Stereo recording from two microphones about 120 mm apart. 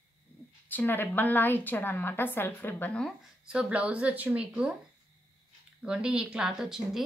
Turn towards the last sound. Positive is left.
turn(degrees=-5)  # may be behind; listen again after turning